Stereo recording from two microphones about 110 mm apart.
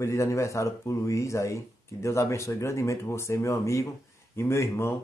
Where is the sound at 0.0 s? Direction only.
25° left (ahead or behind).